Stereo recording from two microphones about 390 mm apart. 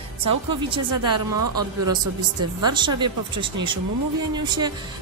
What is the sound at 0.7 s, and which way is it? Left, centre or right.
Speech, centre.